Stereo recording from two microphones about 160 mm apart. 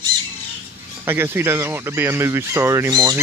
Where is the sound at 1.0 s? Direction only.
15° right (ahead or behind).